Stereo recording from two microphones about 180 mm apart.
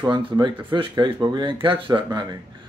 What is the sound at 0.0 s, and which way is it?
Speech, 25° right (ahead or behind).